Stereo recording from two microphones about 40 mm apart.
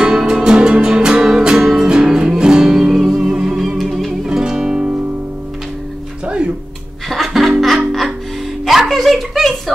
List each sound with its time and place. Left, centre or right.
0.0 s music: centre
4.3 s music: centre
6.2 s music: right
7.1 s music: centre
8.6 s a sound: centre